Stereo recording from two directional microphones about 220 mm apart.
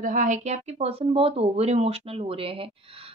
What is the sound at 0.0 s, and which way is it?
Speech, 35° right (ahead or behind).